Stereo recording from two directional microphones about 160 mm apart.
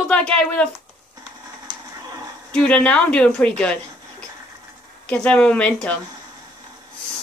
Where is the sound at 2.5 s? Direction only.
5° left (ahead or behind).